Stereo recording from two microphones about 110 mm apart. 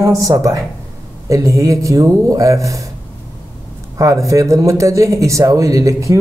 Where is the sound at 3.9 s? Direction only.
30° right (ahead or behind).